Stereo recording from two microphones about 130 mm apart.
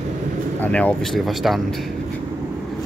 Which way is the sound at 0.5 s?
10° left (ahead or behind).